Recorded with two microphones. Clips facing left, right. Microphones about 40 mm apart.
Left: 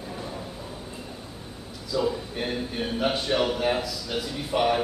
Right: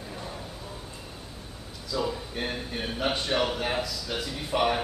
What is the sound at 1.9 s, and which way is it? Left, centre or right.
Speech, centre.